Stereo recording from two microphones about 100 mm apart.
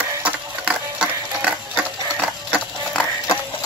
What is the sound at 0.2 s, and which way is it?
Music, 10° right (ahead or behind).